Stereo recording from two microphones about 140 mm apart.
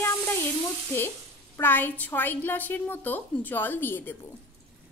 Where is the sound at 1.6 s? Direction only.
15° left (ahead or behind).